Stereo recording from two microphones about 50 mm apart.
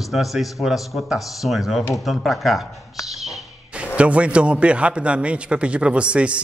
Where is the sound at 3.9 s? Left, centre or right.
Right.